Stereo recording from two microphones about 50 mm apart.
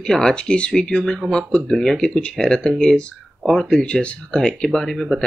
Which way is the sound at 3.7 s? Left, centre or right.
Centre.